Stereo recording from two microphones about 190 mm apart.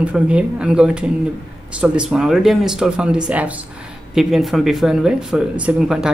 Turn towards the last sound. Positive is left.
turn(degrees=-5)  # may be behind; listen again after turning